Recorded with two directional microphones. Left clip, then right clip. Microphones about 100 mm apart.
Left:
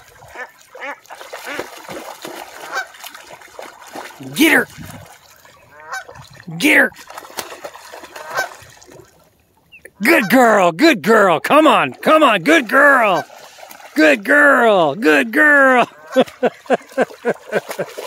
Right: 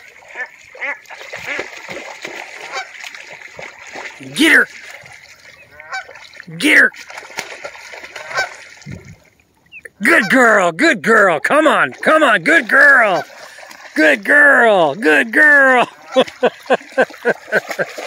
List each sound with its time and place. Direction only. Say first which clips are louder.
0.3 s splash: right 4 dB; 25° left (ahead or behind)
3.2 s a sound: right 3 dB; 30° left (ahead or behind)
6.6 s speech: right 2 dB; 65° left (ahead or behind)
7.2 s bird: right 2 dB; centre (ahead or behind)
7.7 s chicken: right 3 dB; 30° left (ahead or behind)
10.0 s speech: right 1 dB; 65° left (ahead or behind); by 12.8 s 90° left
12.8 s speech: right 3 dB; 60° left (ahead or behind)
13.9 s speech: right 1 dB; 80° left; by 16.2 s 60° left (ahead or behind)
16.3 s a sound: right 2 dB; 45° left (ahead or behind)